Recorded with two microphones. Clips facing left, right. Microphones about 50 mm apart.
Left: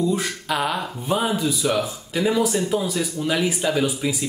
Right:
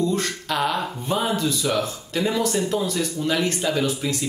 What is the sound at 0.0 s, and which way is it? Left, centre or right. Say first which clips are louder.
Speech: left 1 dB; centre.